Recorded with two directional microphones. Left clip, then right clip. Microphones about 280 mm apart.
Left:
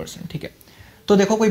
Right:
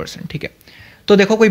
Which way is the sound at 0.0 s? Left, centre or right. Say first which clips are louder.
Right 6 dB; right.